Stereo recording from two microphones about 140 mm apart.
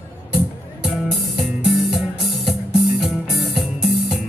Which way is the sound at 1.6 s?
Centre (ahead or behind).